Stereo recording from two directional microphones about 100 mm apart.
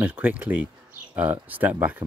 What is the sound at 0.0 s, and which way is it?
Speech, 15° right (ahead or behind).